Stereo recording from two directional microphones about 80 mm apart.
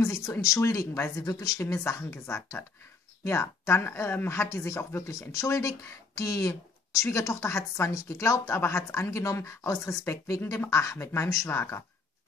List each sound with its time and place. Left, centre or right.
0.0 s speech: left
1.1 s speech: left
5.3 s speech: left
10.4 s speech: left
10.7 s speech: left